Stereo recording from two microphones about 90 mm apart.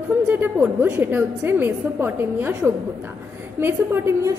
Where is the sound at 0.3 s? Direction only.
20° right (ahead or behind).